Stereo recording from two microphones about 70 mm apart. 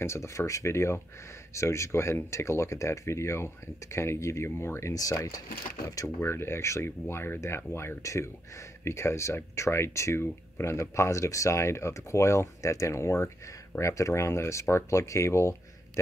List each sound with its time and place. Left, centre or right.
0.0 s speech: left
4.9 s speech: left
6.2 s speech: left